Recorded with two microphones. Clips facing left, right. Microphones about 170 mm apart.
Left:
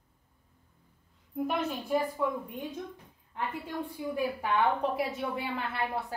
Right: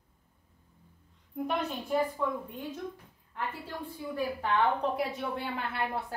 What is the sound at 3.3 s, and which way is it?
A woman's voice, 15° left (ahead or behind).